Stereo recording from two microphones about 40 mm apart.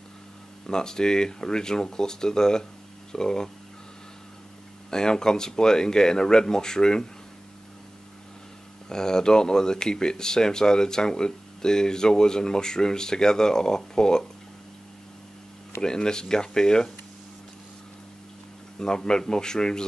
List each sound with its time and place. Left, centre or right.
0.7 s speech: centre
4.9 s speech: centre
8.8 s speech: centre
15.8 s speech: centre
18.8 s speech: centre